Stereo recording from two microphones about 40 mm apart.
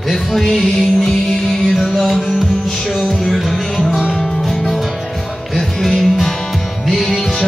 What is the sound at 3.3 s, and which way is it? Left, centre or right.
Music, centre.